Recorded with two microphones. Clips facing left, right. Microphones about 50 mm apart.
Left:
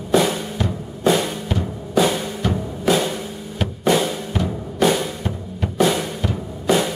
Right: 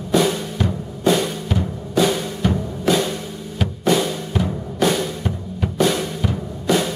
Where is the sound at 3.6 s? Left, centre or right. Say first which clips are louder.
Even; centre.